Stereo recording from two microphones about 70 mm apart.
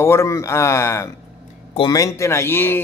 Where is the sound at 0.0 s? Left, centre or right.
Left.